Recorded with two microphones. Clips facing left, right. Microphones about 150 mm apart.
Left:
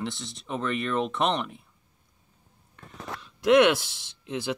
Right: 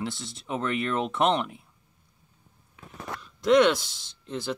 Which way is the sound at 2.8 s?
5° right (ahead or behind).